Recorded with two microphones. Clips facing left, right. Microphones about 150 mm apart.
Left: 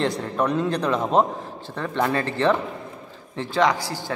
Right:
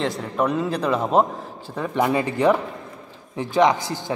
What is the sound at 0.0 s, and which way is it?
A man's voice, centre (ahead or behind).